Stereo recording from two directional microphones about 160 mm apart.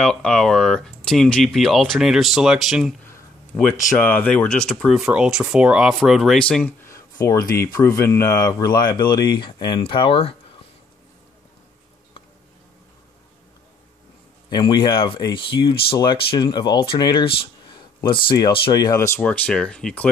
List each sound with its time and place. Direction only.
0.0 s speech: 5° left (ahead or behind)
3.5 s speech: 10° left (ahead or behind); by 10.3 s 30° left (ahead or behind)
14.5 s speech: 25° left (ahead or behind)
17.6 s a sound: 30° left (ahead or behind)
18.7 s speech: 25° left (ahead or behind); by 20.1 s 5° left (ahead or behind)